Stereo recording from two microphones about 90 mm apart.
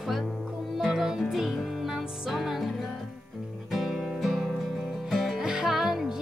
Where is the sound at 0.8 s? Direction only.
5° right (ahead or behind).